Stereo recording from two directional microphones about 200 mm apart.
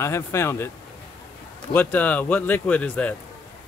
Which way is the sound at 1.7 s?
10° left (ahead or behind).